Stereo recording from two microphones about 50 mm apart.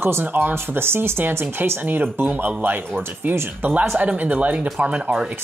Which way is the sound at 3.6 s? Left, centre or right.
Right.